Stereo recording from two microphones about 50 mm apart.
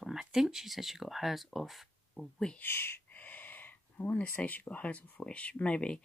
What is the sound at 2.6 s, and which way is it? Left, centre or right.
Speech, left.